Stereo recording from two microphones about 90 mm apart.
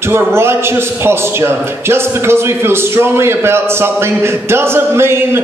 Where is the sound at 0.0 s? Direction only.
25° right (ahead or behind).